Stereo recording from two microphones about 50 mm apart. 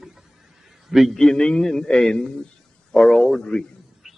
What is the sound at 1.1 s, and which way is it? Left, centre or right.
A man's voice, centre.